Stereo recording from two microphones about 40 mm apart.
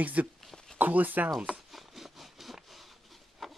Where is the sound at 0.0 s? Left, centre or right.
Right.